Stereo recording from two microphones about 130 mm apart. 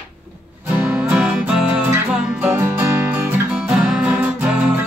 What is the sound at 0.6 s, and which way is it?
Music, 10° right (ahead or behind).